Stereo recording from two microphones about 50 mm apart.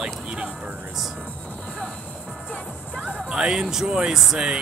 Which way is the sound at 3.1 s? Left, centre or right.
Centre.